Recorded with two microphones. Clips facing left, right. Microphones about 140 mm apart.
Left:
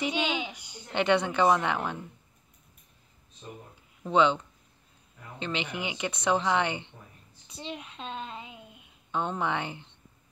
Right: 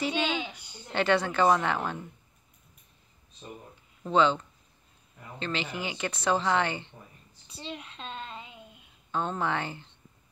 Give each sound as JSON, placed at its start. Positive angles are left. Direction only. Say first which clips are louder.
{"t": 0.0, "sound": "a woman's voice", "louder": "even", "side_deg": 15}
{"t": 4.1, "sound": "a woman's voice", "louder": "even", "side_deg": 15}
{"t": 7.4, "sound": "a sound", "louder": "left 1 dB", "side_deg": 15}
{"t": 9.1, "sound": "a woman's voice", "louder": "even", "side_deg": 15}